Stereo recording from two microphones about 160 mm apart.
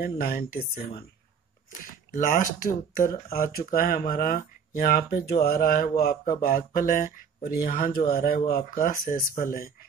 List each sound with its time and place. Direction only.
0.0 s speech: 70° left (ahead or behind)
2.1 s speech: 55° left (ahead or behind)